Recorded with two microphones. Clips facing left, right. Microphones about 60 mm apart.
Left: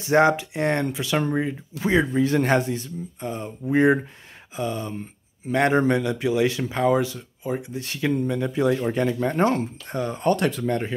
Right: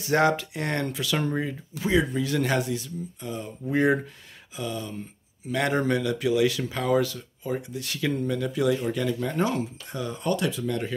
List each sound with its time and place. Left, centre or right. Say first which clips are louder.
0.0 s speech: left 4 dB; left
1.8 s speech: left 3 dB; left
3.6 s speech: left 4 dB; left